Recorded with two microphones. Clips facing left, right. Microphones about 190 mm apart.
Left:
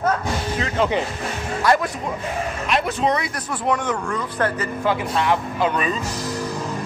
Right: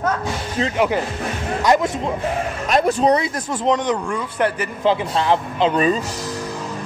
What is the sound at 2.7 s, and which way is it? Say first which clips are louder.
Speech: right 5 dB; 40° right (ahead or behind).